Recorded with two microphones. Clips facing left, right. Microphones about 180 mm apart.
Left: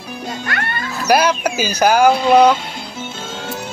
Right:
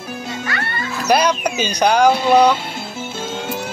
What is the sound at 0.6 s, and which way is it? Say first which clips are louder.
Music: left 1 dB; 55° left (ahead or behind).